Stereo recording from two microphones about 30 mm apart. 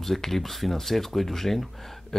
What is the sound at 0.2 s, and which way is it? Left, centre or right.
Speech, centre.